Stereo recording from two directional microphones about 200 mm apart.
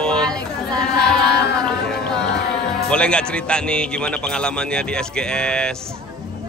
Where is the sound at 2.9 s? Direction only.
5° left (ahead or behind).